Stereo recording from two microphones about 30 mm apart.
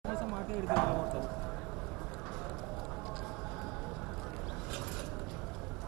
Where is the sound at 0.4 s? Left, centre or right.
Centre.